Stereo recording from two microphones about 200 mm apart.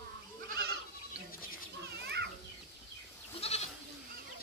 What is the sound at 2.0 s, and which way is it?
Children playing, 55° right (ahead or behind).